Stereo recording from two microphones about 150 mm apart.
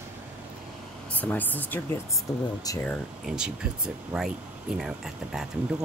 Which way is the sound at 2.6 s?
20° left (ahead or behind).